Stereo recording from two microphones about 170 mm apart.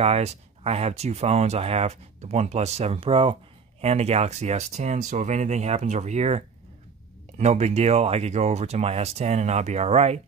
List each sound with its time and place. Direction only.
0.0 s speech: 40° right (ahead or behind)